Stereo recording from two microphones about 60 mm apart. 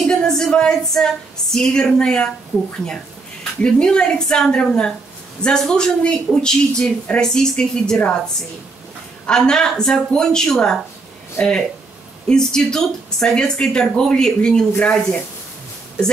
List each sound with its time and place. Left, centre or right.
0.0 s speech: centre
3.6 s speech: centre
9.5 s speech: centre
11.4 s speech: left
12.3 s speech: centre